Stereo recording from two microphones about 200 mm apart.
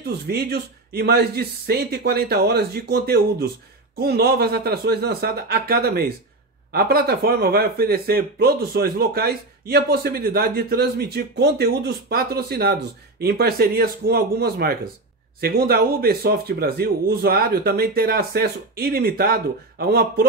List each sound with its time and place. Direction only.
0.0 s speech: 50° right (ahead or behind)